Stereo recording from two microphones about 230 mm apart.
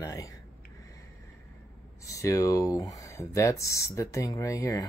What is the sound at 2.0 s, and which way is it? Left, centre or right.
Speech, centre.